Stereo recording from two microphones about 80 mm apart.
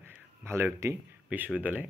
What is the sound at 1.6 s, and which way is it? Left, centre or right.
Speech, right.